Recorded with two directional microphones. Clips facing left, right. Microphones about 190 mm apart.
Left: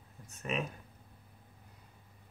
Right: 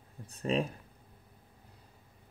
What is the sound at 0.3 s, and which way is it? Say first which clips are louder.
Speech: right 6 dB; 35° right (ahead or behind).